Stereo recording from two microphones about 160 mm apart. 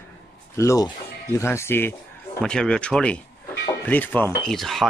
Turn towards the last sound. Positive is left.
turn(degrees=0)  # may be behind; listen again after turning